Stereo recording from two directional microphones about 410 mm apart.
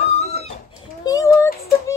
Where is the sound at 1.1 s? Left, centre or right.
Centre.